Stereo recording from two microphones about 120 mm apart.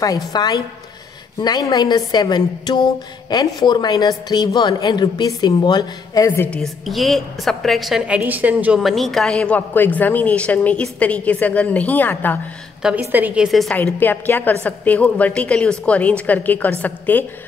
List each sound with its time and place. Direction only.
0.0 s a woman's voice: 30° left (ahead or behind)
6.5 s a woman's voice: centre (ahead or behind)
8.2 s a woman's voice: 15° right (ahead or behind)
8.8 s a woman's voice: centre (ahead or behind)
12.8 s a woman's voice: 15° right (ahead or behind)
13.9 s a woman's voice: 15° left (ahead or behind)